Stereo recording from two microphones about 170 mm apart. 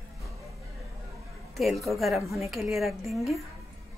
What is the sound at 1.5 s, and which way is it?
Speech, centre (ahead or behind).